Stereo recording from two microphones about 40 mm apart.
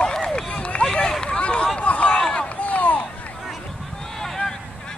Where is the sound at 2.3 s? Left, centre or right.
Left.